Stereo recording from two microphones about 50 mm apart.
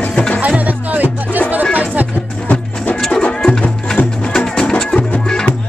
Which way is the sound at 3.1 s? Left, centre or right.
Left.